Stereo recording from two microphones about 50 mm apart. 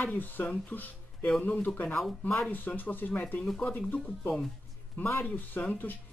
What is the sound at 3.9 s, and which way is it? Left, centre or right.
Speech, centre.